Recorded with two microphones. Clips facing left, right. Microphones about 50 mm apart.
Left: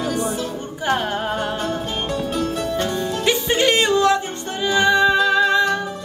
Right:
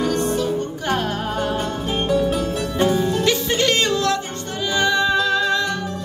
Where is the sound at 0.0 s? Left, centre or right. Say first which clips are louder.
Right 3 dB; centre.